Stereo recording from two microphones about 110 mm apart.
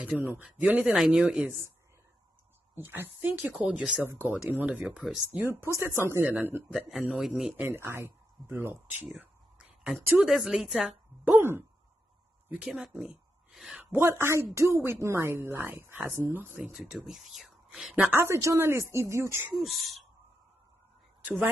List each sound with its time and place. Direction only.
0.4 s speech: 10° right (ahead or behind)
2.7 s speech: 20° right (ahead or behind)
4.8 s speech: 5° right (ahead or behind)
6.0 s speech: 20° right (ahead or behind)
6.9 s speech: 5° right (ahead or behind)
7.6 s speech: 20° right (ahead or behind)
9.0 s a sound: 10° right (ahead or behind)
9.9 s speech: centre (ahead or behind)
10.9 s a woman's voice: 15° right (ahead or behind)
13.7 s speech: 25° right (ahead or behind)
16.9 s speech: centre (ahead or behind)
17.9 s speech: 15° right (ahead or behind)
19.5 s speech: centre (ahead or behind)